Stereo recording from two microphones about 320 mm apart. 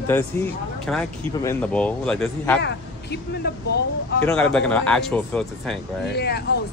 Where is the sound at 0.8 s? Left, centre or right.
Centre.